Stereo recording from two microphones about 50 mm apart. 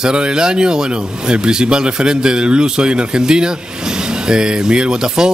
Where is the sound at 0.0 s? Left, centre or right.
Centre.